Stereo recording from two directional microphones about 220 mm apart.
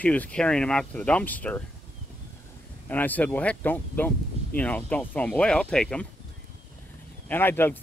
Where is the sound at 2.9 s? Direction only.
10° left (ahead or behind).